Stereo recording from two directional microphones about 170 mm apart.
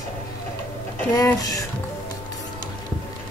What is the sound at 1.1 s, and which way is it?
Speech, 20° left (ahead or behind).